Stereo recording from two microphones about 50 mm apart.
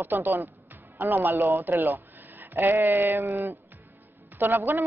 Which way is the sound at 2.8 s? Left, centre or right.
Right.